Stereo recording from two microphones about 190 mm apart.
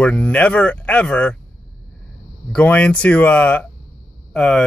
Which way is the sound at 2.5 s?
5° left (ahead or behind).